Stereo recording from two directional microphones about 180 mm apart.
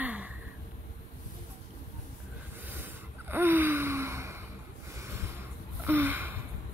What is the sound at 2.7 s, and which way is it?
Gasp, 10° right (ahead or behind).